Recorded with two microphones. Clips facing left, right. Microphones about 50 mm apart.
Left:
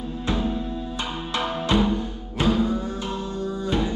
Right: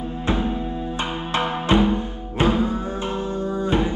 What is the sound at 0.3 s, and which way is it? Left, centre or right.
Music, right.